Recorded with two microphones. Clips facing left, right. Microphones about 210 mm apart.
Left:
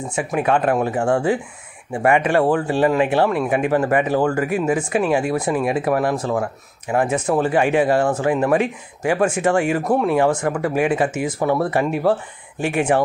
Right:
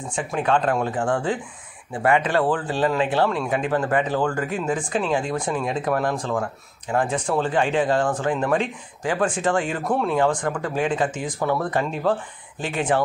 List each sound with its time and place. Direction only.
0.1 s speech: 10° left (ahead or behind)
11.3 s speech: 25° left (ahead or behind)
11.7 s speech: 10° left (ahead or behind)